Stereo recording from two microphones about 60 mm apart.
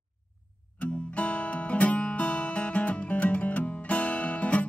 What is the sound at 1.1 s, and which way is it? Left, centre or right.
Music, left.